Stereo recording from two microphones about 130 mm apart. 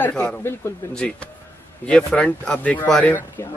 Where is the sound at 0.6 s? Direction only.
20° left (ahead or behind).